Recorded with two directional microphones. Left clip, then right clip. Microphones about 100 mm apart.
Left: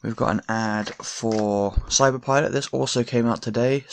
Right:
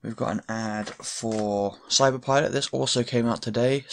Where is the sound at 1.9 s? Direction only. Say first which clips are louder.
Left 1 dB; 30° left (ahead or behind).